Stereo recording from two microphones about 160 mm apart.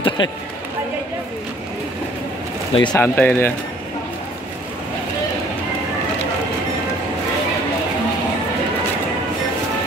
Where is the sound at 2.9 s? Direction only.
10° left (ahead or behind).